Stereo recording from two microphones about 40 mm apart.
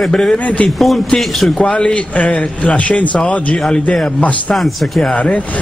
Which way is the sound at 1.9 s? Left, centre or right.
Left.